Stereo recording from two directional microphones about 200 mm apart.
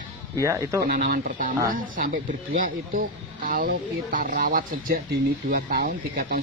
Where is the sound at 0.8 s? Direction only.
50° right (ahead or behind).